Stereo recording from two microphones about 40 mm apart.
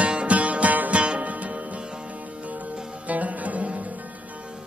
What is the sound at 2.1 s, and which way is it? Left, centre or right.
Music, right.